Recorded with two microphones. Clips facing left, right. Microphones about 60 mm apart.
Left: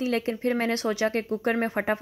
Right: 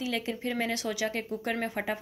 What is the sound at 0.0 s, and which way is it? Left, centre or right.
Speech, left.